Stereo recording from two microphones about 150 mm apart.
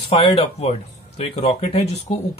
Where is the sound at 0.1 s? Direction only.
40° left (ahead or behind).